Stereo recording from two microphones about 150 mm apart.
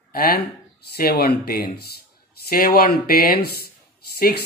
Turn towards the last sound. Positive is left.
turn(degrees=90)